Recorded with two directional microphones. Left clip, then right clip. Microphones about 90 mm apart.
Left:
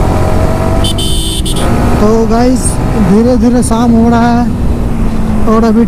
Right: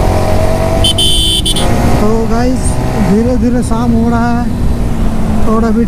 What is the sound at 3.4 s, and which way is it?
Speech, 20° left (ahead or behind).